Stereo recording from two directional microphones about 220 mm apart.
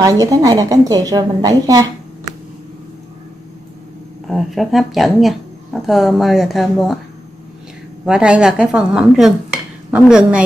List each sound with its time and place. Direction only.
0.0 s a woman's voice: 15° right (ahead or behind)
4.3 s speech: centre (ahead or behind)
8.0 s stir: 5° right (ahead or behind)